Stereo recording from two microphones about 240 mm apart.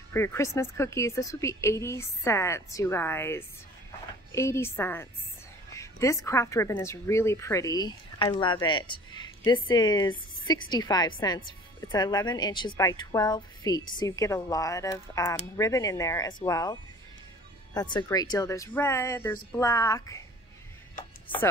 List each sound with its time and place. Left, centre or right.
0.1 s a woman's voice: centre
17.7 s a woman's voice: centre